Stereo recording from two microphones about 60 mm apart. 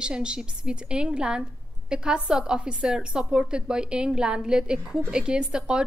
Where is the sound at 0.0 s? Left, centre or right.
Centre.